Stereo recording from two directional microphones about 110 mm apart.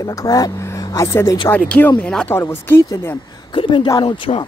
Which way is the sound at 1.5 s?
15° left (ahead or behind).